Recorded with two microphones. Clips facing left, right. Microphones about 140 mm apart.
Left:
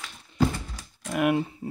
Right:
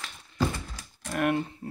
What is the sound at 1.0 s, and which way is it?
Speech, 10° left (ahead or behind).